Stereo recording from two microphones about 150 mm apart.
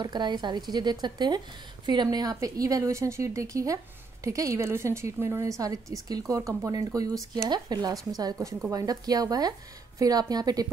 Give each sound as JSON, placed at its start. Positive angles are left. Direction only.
{"t": 0.0, "sound": "a woman's voice", "side_deg": -30}